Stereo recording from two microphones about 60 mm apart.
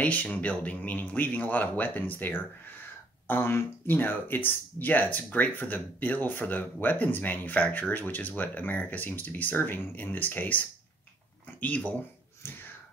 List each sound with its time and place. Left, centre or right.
0.0 s speech: left
11.6 s speech: left
12.4 s speech: left